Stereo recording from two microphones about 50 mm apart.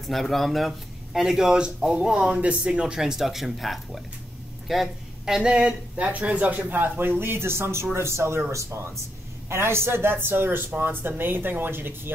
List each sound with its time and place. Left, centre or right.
0.0 s speech: centre; by 8.4 s right
8.5 s speech: right
9.5 s speech: right